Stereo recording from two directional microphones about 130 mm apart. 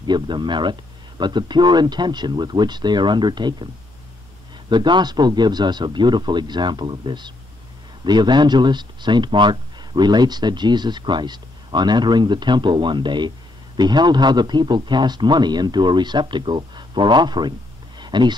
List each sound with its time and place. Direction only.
0.0 s speech: 35° right (ahead or behind)
4.6 s speech: 35° right (ahead or behind)